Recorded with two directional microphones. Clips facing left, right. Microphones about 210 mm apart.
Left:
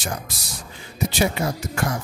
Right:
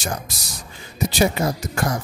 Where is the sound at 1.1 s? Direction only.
40° right (ahead or behind).